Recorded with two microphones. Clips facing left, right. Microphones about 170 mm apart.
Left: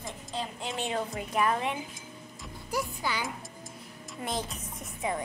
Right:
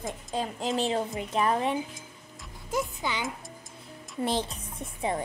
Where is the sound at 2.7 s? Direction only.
20° right (ahead or behind).